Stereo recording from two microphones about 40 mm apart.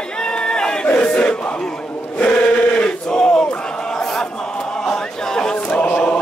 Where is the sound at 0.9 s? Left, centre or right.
Left.